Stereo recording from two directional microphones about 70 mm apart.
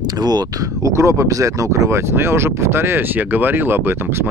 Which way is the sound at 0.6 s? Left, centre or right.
Right.